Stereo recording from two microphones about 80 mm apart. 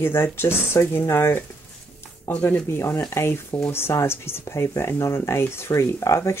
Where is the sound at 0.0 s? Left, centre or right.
Left.